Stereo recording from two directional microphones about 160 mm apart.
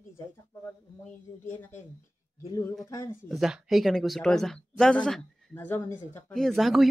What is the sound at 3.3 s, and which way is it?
Speech, centre (ahead or behind).